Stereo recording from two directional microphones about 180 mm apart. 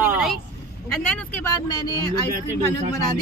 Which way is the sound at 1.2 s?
10° left (ahead or behind).